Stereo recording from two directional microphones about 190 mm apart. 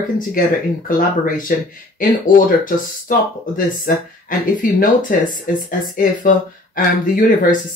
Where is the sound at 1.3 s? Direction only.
45° left (ahead or behind).